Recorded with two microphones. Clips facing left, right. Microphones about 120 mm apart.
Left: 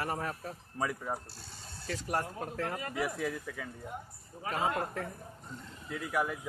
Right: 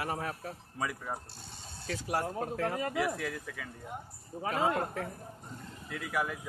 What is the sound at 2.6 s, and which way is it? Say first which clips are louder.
Speech: right 4 dB; 25° right (ahead or behind).